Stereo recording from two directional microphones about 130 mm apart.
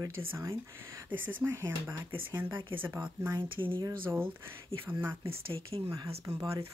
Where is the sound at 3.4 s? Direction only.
40° right (ahead or behind).